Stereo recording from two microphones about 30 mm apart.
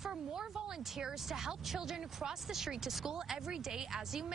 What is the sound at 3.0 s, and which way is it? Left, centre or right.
Speech, right.